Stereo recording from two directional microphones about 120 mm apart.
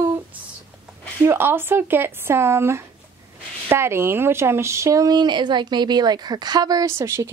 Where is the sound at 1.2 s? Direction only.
20° right (ahead or behind).